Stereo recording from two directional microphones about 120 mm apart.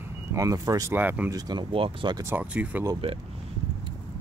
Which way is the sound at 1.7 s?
50° right (ahead or behind).